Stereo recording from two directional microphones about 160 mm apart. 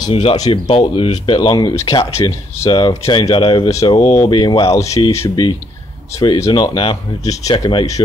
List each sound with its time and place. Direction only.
0.1 s speech: 35° left (ahead or behind)